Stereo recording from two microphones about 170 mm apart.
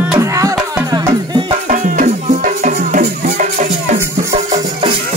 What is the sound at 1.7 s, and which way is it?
Music, 50° right (ahead or behind).